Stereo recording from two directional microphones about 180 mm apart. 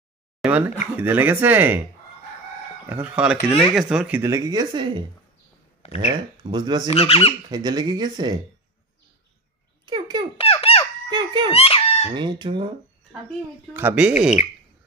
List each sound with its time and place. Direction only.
0.4 s speech: 10° right (ahead or behind)
2.9 s speech: 10° right (ahead or behind); by 5.0 s 25° right (ahead or behind)
6.0 s speech: 25° right (ahead or behind)
6.9 s speech: 35° left (ahead or behind)
7.4 s speech: 25° right (ahead or behind)
9.8 s fowl: 25° right (ahead or behind)
10.4 s a sound: 35° left (ahead or behind)
11.1 s speech: 25° right (ahead or behind)
11.5 s speech: 30° left (ahead or behind)
12.1 s speech: 25° right (ahead or behind)
13.7 s speech: 10° right (ahead or behind)